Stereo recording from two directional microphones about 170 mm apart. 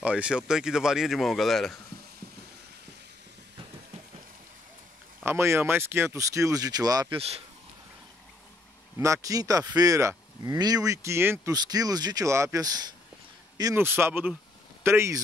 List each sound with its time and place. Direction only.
0.0 s speech: 5° right (ahead or behind)
5.2 s speech: 15° right (ahead or behind)
7.2 s speech: 35° right (ahead or behind)
8.9 s speech: 20° right (ahead or behind)